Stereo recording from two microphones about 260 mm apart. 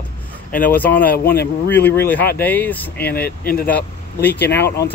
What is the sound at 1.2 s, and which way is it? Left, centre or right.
Speech, left.